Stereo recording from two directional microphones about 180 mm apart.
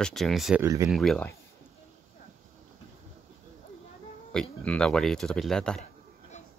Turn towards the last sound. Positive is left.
turn(degrees=5)  # may be behind; listen again after turning